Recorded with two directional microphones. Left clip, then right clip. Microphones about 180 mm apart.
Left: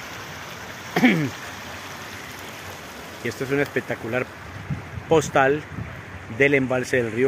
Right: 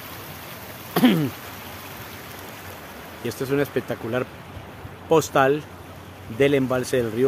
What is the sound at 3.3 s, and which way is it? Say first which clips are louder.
Speech: even; 15° right (ahead or behind).